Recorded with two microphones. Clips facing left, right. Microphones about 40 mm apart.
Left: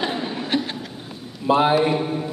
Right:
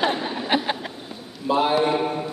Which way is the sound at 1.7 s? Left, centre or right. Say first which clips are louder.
Left 1 dB; centre.